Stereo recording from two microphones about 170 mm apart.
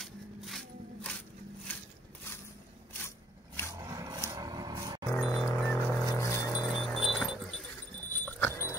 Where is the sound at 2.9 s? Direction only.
15° left (ahead or behind).